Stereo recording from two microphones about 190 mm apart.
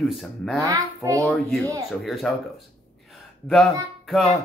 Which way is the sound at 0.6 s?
20° right (ahead or behind).